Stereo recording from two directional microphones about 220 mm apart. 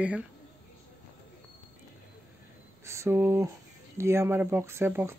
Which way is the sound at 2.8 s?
15° right (ahead or behind).